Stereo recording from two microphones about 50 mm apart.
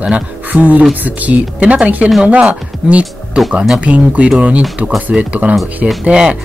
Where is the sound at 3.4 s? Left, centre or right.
Centre.